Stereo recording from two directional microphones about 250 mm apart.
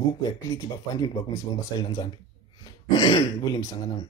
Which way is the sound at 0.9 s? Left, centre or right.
Centre.